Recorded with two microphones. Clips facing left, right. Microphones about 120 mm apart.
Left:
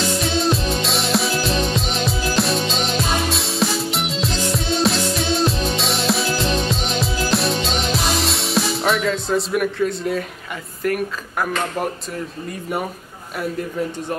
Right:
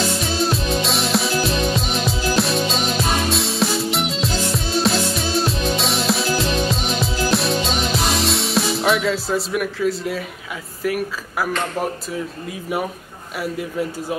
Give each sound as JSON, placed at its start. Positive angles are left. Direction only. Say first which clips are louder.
{"t": 0.2, "sound": "music", "louder": "left 2 dB", "side_deg": 0}
{"t": 10.8, "sound": "speech", "louder": "left 1 dB", "side_deg": -5}